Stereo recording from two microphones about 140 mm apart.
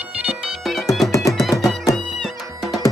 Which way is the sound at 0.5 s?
Centre (ahead or behind).